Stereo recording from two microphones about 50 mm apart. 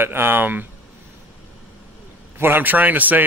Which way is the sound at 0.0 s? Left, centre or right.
Right.